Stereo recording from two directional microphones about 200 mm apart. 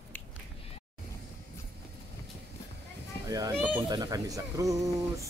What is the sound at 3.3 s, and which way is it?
Speech, 15° right (ahead or behind).